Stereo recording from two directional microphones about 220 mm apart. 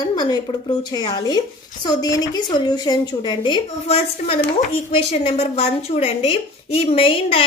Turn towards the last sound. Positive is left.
turn(degrees=25)  # may be behind; listen again after turning